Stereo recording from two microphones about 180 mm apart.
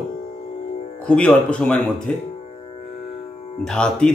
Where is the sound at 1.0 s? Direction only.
5° left (ahead or behind).